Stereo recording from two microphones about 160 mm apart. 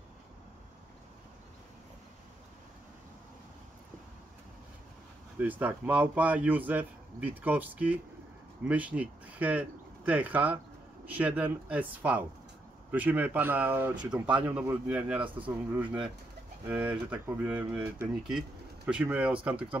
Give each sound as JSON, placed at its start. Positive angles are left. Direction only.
{"t": 5.4, "sound": "a man's voice", "side_deg": -10}